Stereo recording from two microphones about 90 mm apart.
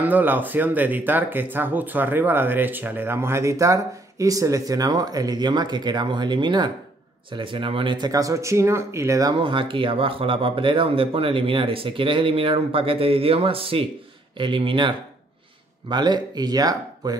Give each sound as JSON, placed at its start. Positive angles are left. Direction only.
{"t": 0.0, "sound": "speech", "side_deg": -20}
{"t": 7.2, "sound": "speech", "side_deg": -70}
{"t": 8.1, "sound": "speech", "side_deg": -40}
{"t": 9.4, "sound": "speech", "side_deg": -70}
{"t": 14.4, "sound": "speech", "side_deg": -75}
{"t": 15.9, "sound": "speech", "side_deg": -55}